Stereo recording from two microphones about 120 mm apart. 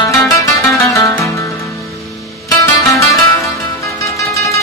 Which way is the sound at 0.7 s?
25° left (ahead or behind).